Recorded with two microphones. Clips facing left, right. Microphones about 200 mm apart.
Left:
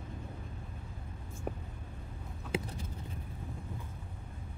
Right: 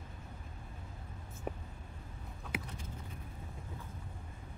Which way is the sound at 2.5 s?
30° left (ahead or behind).